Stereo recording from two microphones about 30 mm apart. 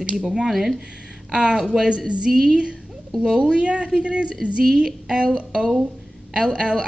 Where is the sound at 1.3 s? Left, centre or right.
Right.